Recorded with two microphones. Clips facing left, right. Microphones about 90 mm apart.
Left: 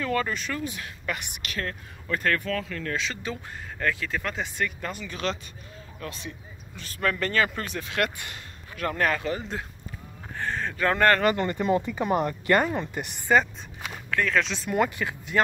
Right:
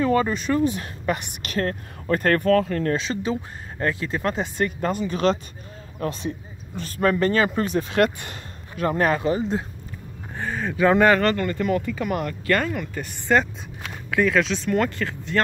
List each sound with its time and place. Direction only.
0.0 s speech: 25° right (ahead or behind); by 7.0 s 40° right (ahead or behind)
7.0 s speech: 25° right (ahead or behind)
7.7 s speech: 35° right (ahead or behind)
8.8 s speech: 20° right (ahead or behind)
10.3 s speech: 10° right (ahead or behind)
11.3 s speech: 20° left (ahead or behind)
13.3 s speech: centre (ahead or behind)